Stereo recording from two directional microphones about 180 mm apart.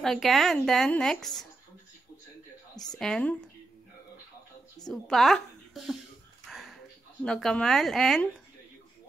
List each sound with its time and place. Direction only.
0.0 s a woman's voice: centre (ahead or behind)
3.0 s a woman's voice: 5° left (ahead or behind)
4.8 s a woman's voice: centre (ahead or behind)
6.4 s a sound: centre (ahead or behind)
7.2 s a woman's voice: 5° left (ahead or behind)